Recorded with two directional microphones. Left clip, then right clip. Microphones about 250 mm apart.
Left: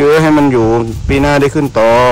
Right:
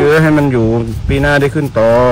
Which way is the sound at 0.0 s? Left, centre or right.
Left.